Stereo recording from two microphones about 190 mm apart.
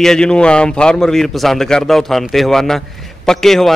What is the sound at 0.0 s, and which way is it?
A man's voice, 5° left (ahead or behind).